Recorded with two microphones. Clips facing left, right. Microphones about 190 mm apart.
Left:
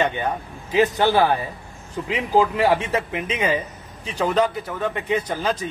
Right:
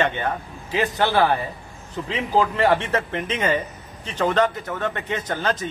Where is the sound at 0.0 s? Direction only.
15° left (ahead or behind).